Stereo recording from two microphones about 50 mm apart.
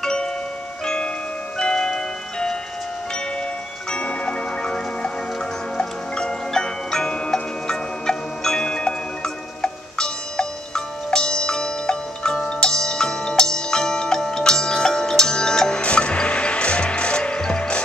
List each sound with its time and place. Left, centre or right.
0.0 s glockenspiel: centre
0.8 s music: centre
3.9 s glockenspiel: left
15.8 s music: left